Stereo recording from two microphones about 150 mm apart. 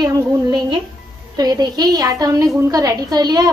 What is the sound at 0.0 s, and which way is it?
A woman's voice, 30° right (ahead or behind).